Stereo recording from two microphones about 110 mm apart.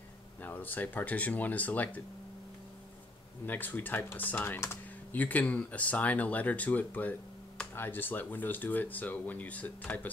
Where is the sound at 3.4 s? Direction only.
15° left (ahead or behind).